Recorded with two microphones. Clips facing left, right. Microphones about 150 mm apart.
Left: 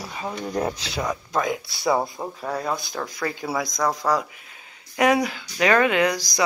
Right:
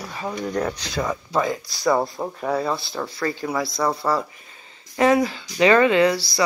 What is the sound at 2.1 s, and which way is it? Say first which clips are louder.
Speech: right 4 dB; 10° right (ahead or behind).